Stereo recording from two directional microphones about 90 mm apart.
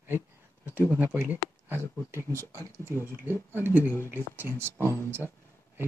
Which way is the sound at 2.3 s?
35° right (ahead or behind).